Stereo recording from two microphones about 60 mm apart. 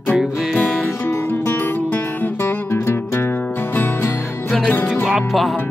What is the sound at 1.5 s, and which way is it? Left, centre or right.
Music, left.